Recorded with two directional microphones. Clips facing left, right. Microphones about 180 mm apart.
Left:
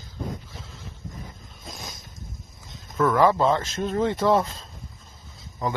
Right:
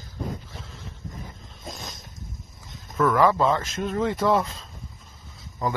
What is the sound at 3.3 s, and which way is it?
Speech, 25° left (ahead or behind).